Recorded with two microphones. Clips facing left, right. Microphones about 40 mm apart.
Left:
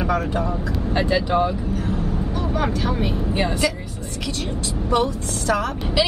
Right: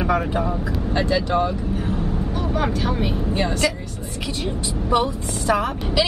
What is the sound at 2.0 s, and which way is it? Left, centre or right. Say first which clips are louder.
Speech: even; centre.